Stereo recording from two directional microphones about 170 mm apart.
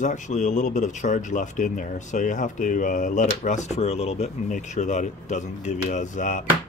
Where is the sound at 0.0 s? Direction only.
45° left (ahead or behind).